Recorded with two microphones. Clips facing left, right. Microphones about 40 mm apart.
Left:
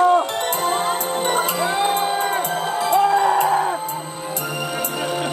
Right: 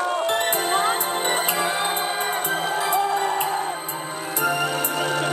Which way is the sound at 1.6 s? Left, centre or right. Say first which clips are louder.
Left 4 dB; centre.